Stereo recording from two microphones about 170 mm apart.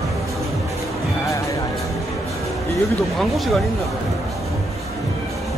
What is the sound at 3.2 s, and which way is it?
Speech, centre (ahead or behind).